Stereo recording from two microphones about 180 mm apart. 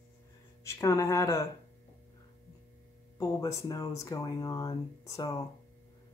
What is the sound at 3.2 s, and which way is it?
Speech, 20° left (ahead or behind).